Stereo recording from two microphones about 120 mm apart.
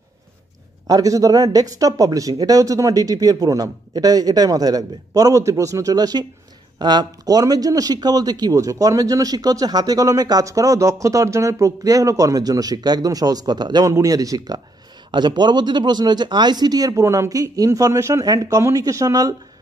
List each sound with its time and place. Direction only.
0.8 s speech: 30° right (ahead or behind)